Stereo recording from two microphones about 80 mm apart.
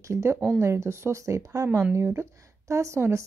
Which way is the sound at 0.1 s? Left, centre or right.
Right.